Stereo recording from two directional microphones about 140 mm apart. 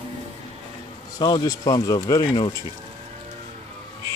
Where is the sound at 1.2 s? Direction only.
30° left (ahead or behind).